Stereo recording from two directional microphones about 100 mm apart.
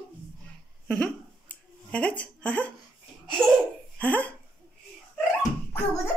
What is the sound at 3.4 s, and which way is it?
Speech, 20° right (ahead or behind).